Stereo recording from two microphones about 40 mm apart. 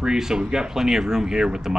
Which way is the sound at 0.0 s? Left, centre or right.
Centre.